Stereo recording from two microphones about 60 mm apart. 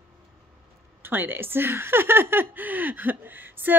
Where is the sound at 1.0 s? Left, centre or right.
Right.